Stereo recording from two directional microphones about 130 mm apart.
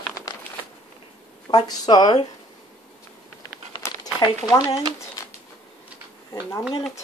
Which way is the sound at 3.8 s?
30° left (ahead or behind).